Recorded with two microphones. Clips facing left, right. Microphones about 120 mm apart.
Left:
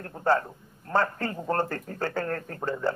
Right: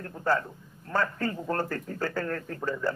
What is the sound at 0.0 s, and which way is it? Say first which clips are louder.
A man's voice: left 3 dB; 35° left (ahead or behind).